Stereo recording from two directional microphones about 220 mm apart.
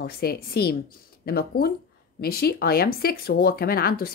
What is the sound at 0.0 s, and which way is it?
Speech, 45° left (ahead or behind).